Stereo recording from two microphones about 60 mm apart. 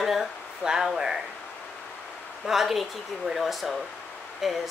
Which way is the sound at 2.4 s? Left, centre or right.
Centre.